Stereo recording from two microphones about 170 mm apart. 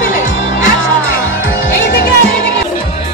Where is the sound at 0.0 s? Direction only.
55° left (ahead or behind).